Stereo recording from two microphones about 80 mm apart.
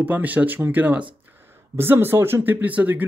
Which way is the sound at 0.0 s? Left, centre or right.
Right.